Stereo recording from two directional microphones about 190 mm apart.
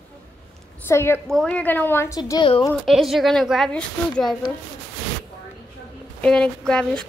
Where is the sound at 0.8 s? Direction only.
10° left (ahead or behind).